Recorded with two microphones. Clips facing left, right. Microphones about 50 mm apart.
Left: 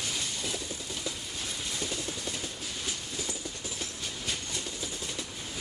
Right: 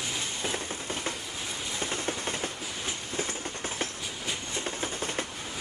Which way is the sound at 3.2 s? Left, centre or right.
Right.